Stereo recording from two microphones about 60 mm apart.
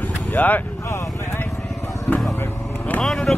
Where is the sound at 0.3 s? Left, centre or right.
Left.